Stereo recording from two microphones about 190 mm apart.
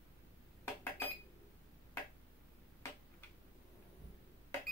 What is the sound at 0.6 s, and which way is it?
Dishes, 10° left (ahead or behind).